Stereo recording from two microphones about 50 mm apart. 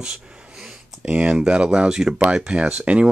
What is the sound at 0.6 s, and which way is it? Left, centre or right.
Speech, centre.